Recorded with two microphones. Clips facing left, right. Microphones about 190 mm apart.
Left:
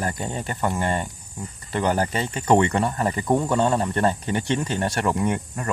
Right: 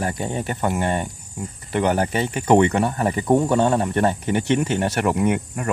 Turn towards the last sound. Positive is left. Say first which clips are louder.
# right 4 dB
turn(degrees=-10)  # may be behind; listen again after turning